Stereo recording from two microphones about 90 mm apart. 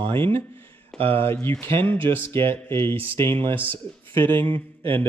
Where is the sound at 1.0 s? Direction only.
90° right.